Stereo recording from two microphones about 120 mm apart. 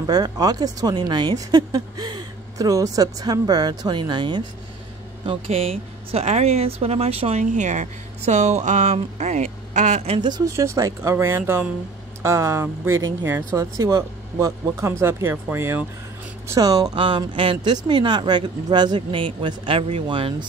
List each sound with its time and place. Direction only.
0.0 s speech: 35° right (ahead or behind)
5.2 s speech: 50° right (ahead or behind); by 7.9 s 90° right
8.3 s speech: 75° right (ahead or behind)
10.1 s speech: 35° right (ahead or behind)